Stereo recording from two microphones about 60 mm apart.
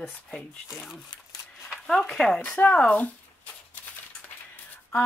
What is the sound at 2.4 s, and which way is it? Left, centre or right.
Speech, left.